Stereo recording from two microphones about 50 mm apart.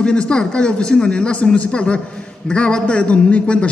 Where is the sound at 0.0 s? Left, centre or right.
Centre.